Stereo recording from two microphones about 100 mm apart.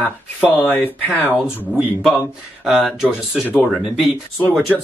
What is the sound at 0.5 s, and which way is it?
Speech, 20° left (ahead or behind).